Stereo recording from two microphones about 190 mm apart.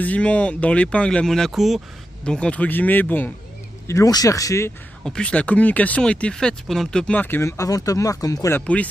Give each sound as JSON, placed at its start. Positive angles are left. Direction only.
{"t": 0.0, "sound": "speech", "side_deg": 5}
{"t": 5.0, "sound": "speech", "side_deg": 5}